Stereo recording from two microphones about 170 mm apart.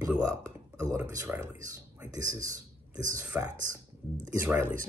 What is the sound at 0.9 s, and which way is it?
Speech, 15° right (ahead or behind).